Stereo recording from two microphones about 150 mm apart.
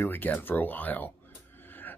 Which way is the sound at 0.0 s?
15° left (ahead or behind).